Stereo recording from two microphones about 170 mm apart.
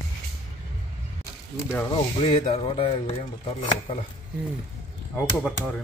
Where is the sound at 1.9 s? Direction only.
30° left (ahead or behind).